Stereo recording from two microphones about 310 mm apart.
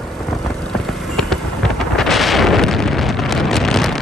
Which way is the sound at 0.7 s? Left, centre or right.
Centre.